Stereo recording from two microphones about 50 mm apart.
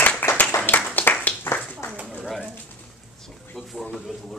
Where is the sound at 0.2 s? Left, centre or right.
Left.